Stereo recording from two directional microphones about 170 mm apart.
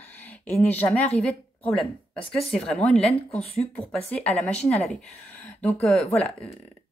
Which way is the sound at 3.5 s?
5° left (ahead or behind).